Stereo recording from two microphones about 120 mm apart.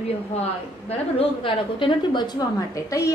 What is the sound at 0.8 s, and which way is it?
A woman's voice, 50° left (ahead or behind).